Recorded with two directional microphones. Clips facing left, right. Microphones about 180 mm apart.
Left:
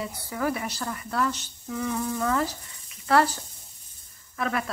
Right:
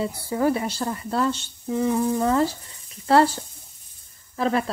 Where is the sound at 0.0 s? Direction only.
30° right (ahead or behind).